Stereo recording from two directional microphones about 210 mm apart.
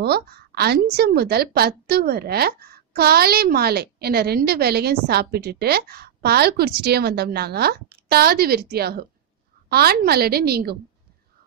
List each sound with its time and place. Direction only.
0.0 s a woman's voice: 50° right (ahead or behind)